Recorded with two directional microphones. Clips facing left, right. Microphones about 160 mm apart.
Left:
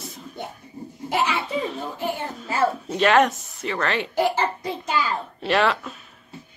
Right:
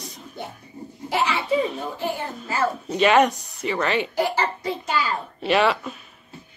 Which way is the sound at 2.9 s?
5° right (ahead or behind).